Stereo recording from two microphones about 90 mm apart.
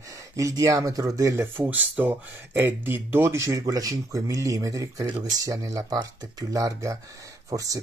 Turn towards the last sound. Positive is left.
turn(degrees=-40)  # may be behind; listen again after turning